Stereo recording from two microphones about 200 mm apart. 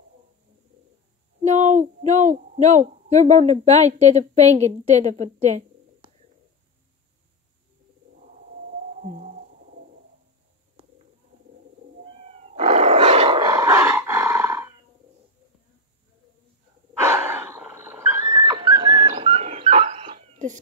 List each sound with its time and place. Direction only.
1.4 s speech: 35° right (ahead or behind)
8.2 s a sound: 45° right (ahead or behind)
12.3 s roar: 30° right (ahead or behind); by 14.7 s 15° right (ahead or behind)
16.9 s dog: 15° right (ahead or behind); by 20.5 s 35° right (ahead or behind)